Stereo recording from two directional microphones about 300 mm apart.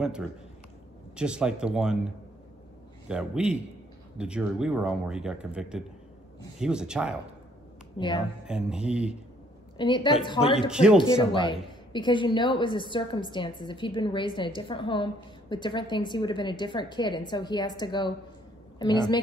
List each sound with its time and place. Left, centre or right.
1.1 s speech: centre
3.1 s speech: centre
8.0 s a woman's voice: centre
8.5 s speech: centre
9.8 s a woman's voice: centre
10.7 s speech: centre
11.1 s a woman's voice: centre